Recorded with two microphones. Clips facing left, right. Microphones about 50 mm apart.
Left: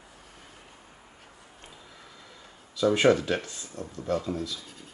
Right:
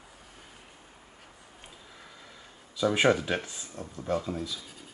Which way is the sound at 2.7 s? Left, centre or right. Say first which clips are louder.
Left 3 dB; centre.